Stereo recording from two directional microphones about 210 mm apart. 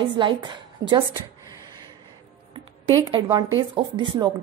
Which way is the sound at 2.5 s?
25° right (ahead or behind).